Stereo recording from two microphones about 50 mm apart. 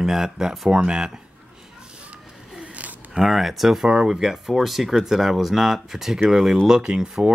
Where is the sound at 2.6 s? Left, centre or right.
Right.